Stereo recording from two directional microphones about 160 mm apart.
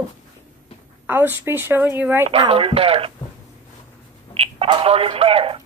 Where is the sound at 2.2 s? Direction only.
35° right (ahead or behind).